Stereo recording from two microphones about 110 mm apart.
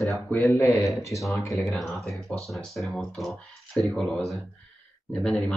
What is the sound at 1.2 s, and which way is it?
Speech, centre (ahead or behind).